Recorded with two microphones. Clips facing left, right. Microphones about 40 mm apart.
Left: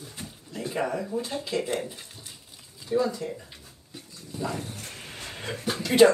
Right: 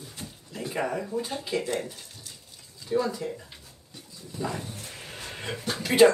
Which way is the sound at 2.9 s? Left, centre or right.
Centre.